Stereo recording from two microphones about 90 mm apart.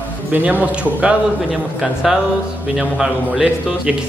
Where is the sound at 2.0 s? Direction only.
5° right (ahead or behind).